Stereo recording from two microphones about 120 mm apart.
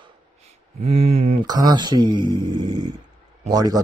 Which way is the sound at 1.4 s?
35° right (ahead or behind).